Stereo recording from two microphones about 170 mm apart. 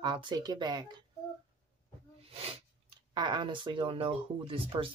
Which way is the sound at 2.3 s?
35° right (ahead or behind).